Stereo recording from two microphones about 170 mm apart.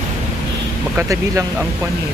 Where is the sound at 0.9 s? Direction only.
15° right (ahead or behind).